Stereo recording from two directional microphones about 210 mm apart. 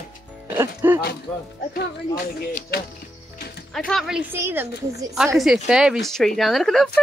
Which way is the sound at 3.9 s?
Centre (ahead or behind).